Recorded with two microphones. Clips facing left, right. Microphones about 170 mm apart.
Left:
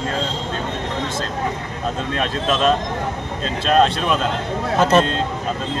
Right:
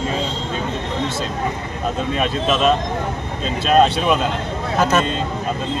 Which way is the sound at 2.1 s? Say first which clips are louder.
Right 1 dB; 5° right (ahead or behind).